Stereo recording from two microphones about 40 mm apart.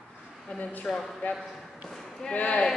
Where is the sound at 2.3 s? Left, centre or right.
Left.